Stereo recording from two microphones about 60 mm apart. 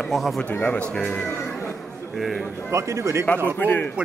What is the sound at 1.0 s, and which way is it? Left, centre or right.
Speech, centre.